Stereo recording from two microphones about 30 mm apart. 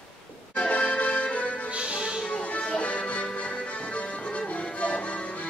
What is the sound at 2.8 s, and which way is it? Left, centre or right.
Music, left.